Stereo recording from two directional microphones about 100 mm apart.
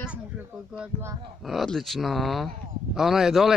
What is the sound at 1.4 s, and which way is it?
Speech, centre (ahead or behind).